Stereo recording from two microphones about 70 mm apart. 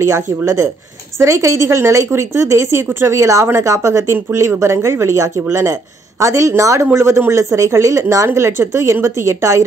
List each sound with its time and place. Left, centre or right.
0.0 s a woman's voice: right
4.1 s a woman's voice: right